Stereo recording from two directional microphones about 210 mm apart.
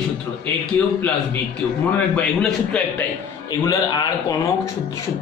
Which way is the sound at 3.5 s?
15° left (ahead or behind).